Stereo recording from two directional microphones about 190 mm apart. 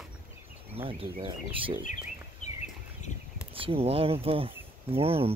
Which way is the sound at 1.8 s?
40° left (ahead or behind).